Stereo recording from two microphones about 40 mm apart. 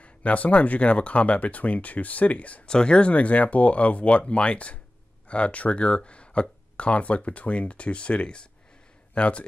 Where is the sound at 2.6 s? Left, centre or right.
Left.